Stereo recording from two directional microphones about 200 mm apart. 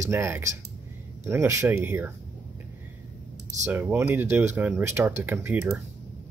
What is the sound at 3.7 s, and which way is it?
Speech, 10° right (ahead or behind).